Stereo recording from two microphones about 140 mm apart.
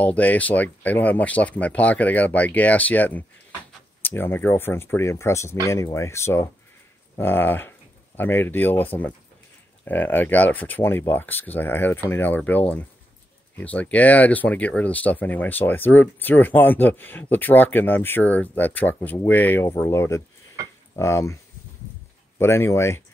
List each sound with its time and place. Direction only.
0.0 s speech: 10° left (ahead or behind)
22.4 s speech: 20° left (ahead or behind)